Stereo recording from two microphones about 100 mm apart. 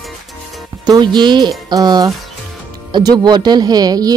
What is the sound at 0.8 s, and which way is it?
A woman's voice, 45° right (ahead or behind).